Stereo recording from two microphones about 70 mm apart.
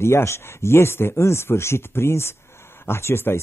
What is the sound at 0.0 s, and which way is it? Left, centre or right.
Speech, left.